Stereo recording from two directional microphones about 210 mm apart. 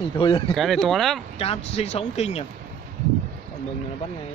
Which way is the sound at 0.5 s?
Centre (ahead or behind).